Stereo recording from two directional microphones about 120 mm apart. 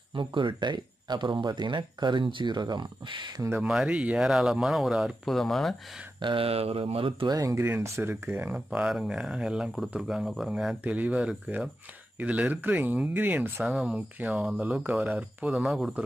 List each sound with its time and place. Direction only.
0.1 s speech: 45° right (ahead or behind)
3.6 s speech: 5° right (ahead or behind)
6.2 s speech: 50° right (ahead or behind)
7.2 s speech: 25° right (ahead or behind); by 15.9 s 5° right (ahead or behind)